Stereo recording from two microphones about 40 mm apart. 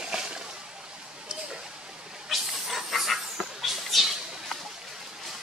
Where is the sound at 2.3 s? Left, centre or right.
Centre.